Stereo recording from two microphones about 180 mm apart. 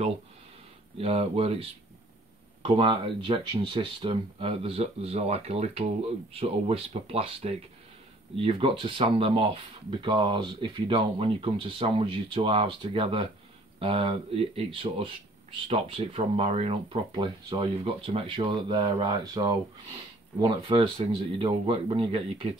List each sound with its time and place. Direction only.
0.9 s speech: 35° right (ahead or behind)